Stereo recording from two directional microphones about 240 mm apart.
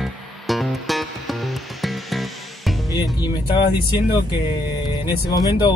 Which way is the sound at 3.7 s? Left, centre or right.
Centre.